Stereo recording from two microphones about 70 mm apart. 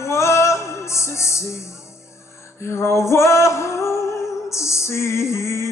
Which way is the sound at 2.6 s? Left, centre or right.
Left.